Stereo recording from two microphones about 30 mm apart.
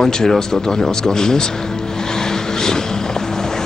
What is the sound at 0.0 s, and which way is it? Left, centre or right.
Speech, centre.